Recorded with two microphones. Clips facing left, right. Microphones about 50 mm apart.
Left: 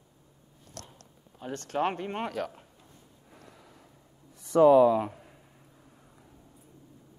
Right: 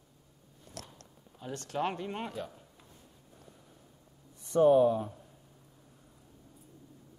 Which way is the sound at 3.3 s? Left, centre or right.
Left.